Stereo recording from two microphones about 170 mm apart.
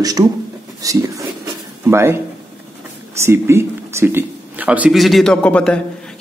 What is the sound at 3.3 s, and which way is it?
A man's voice, 15° right (ahead or behind).